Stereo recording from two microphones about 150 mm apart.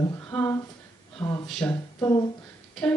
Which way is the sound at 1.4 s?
5° left (ahead or behind).